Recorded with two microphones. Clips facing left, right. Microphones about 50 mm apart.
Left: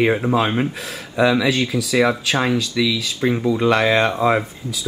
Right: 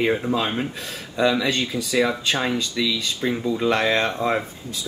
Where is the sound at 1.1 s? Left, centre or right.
Centre.